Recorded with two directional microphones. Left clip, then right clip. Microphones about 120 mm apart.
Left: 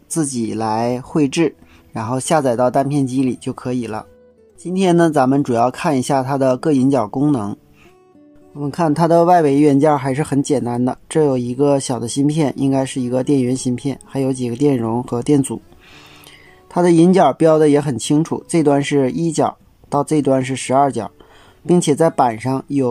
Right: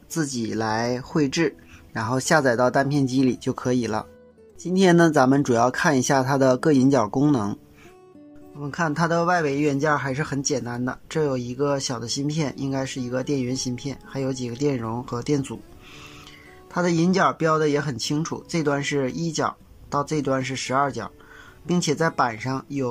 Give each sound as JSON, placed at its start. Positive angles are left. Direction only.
{"t": 0.1, "sound": "speech", "side_deg": 25}
{"t": 6.3, "sound": "speech", "side_deg": 5}
{"t": 6.7, "sound": "speech", "side_deg": 15}
{"t": 8.5, "sound": "speech", "side_deg": 35}
{"t": 16.7, "sound": "speech", "side_deg": 30}